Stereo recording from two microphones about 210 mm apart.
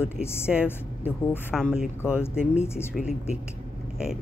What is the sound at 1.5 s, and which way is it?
Speech, centre (ahead or behind).